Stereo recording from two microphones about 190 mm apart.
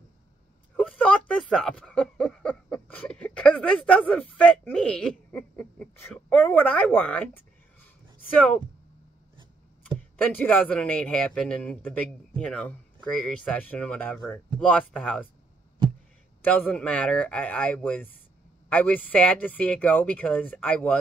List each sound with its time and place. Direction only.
0.7 s speech: 5° left (ahead or behind)
10.2 s speech: 10° left (ahead or behind)
16.4 s speech: 10° left (ahead or behind)